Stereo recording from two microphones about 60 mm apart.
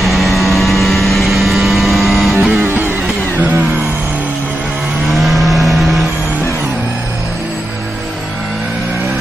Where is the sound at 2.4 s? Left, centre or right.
Right.